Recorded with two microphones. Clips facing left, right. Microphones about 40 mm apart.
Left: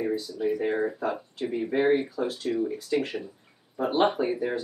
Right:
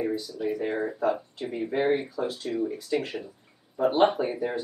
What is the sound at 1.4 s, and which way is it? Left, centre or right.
Speech, centre.